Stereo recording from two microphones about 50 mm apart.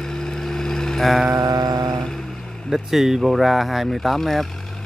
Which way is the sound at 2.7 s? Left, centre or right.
Centre.